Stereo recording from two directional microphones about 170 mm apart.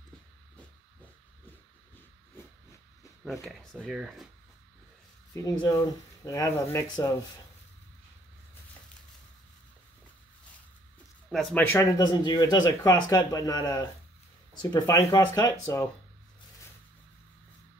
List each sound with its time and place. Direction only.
3.3 s speech: centre (ahead or behind)
5.3 s speech: 20° left (ahead or behind)
11.3 s speech: 10° left (ahead or behind)